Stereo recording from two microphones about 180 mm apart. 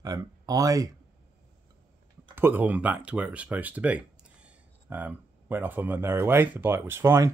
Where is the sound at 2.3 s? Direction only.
10° right (ahead or behind).